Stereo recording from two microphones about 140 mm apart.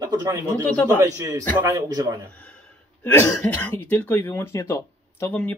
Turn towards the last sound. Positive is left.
turn(degrees=10)  # may be behind; listen again after turning